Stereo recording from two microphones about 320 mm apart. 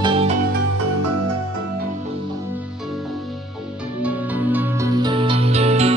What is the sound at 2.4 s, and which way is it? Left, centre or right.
Music, centre.